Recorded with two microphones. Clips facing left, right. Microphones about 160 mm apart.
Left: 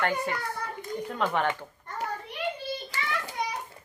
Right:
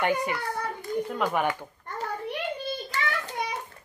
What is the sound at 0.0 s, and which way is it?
Speech, 15° right (ahead or behind).